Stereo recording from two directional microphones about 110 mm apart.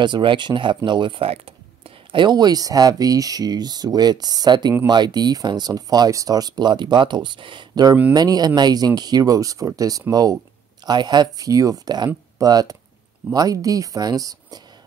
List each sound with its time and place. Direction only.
0.0 s speech: 45° right (ahead or behind)
2.1 s speech: 40° right (ahead or behind)